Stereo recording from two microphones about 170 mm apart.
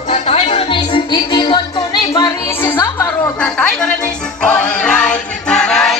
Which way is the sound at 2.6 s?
15° left (ahead or behind).